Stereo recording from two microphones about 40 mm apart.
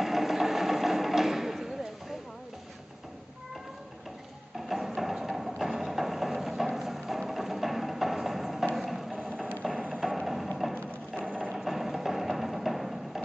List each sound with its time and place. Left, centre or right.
0.0 s a sound: centre
4.6 s music: centre
11.2 s ratchet: right
11.5 s music: centre